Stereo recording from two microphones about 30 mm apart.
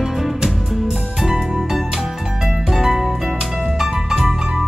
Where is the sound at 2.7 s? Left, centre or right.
Centre.